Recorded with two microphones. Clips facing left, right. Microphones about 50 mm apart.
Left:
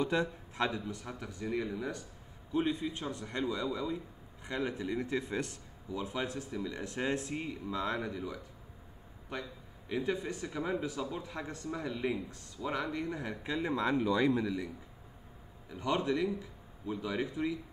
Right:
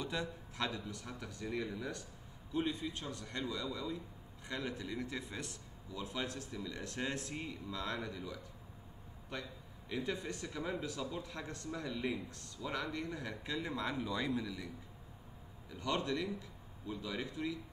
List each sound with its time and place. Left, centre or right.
0.0 s a man's voice: left
5.9 s a man's voice: left
15.7 s a man's voice: centre